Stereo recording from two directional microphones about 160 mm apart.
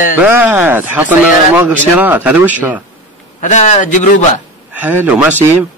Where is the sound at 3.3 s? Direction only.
50° left (ahead or behind).